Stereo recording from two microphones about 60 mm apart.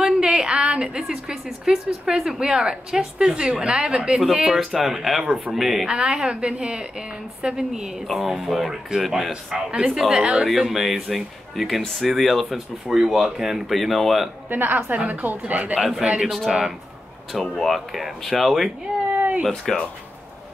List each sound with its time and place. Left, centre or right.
0.0 s a woman's voice: centre
5.9 s a woman's voice: centre
14.5 s speech: right
16.2 s speech: centre
19.1 s cat: right
19.5 s speech: centre